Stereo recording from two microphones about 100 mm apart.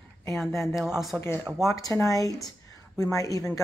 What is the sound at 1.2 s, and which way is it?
Speech, 25° left (ahead or behind).